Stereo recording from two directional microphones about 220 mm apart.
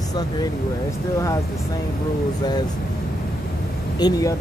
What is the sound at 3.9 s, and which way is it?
Speech, 20° left (ahead or behind).